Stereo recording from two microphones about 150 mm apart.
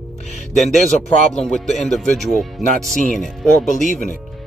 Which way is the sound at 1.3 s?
Centre (ahead or behind).